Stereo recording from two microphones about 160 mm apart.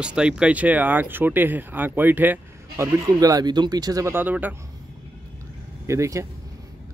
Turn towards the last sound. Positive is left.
turn(degrees=-20)  # may be behind; listen again after turning